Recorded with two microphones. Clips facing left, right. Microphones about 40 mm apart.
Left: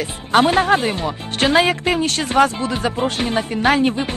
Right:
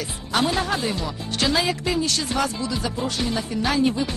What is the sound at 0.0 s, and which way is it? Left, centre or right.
Speech, left.